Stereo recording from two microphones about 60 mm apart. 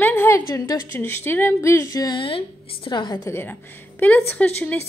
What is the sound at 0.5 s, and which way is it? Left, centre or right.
Speech, left.